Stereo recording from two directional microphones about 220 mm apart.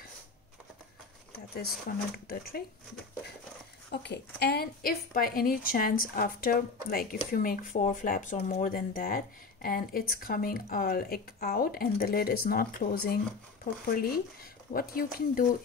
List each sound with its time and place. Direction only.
1.5 s a woman's voice: 45° left (ahead or behind)
3.9 s a woman's voice: 50° left (ahead or behind)